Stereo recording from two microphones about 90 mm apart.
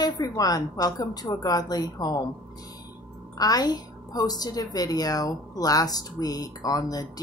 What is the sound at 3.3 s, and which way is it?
A woman's voice, 45° left (ahead or behind).